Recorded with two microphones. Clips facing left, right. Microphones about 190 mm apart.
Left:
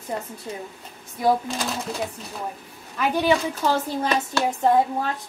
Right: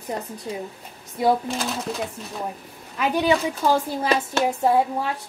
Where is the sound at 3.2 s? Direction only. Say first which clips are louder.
Even; 15° right (ahead or behind).